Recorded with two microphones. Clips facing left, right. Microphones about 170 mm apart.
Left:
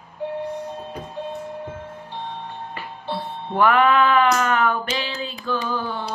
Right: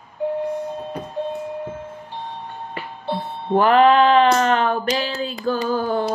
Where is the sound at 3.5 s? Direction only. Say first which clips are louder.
Right 4 dB; 30° right (ahead or behind).